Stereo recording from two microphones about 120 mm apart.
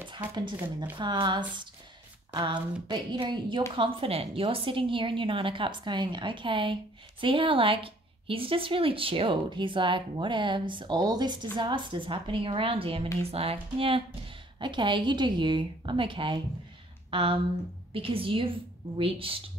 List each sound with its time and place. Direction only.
0.9 s a woman's voice: 40° right (ahead or behind)